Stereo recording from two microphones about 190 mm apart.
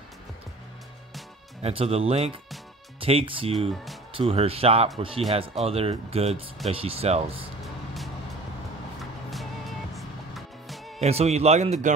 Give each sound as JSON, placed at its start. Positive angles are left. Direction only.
{"t": 1.6, "sound": "speech", "side_deg": -30}
{"t": 7.6, "sound": "music", "side_deg": 0}
{"t": 9.3, "sound": "music", "side_deg": 0}
{"t": 11.0, "sound": "speech", "side_deg": -35}